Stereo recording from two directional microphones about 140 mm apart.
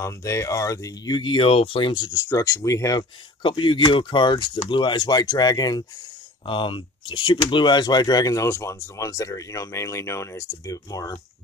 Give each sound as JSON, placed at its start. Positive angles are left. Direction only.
{"t": 0.0, "sound": "speech", "side_deg": 20}